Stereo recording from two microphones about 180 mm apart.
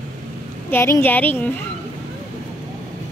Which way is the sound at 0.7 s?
15° left (ahead or behind).